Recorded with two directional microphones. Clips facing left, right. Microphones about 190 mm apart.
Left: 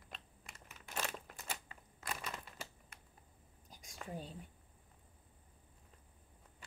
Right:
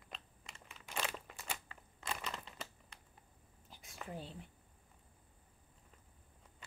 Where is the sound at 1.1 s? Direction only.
Centre (ahead or behind).